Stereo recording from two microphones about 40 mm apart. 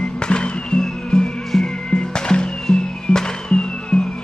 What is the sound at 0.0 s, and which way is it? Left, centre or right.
Music, left.